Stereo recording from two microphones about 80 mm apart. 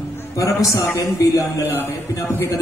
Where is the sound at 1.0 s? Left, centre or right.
Left.